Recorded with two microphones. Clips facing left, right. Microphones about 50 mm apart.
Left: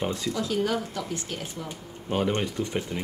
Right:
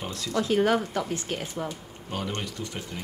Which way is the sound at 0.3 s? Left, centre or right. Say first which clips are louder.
Right 6 dB; right.